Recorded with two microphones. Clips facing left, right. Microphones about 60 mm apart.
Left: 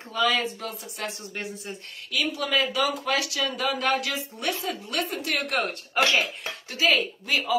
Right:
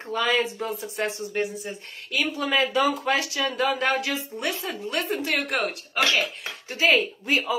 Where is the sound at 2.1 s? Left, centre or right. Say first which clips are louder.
Right 1 dB; right.